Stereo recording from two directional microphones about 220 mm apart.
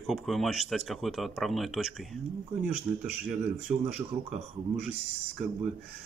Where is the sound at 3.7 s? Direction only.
30° right (ahead or behind).